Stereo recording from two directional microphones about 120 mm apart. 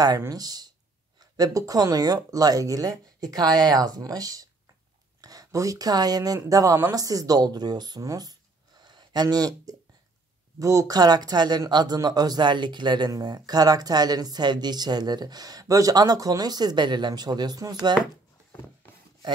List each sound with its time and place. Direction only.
0.2 s speech: 30° right (ahead or behind)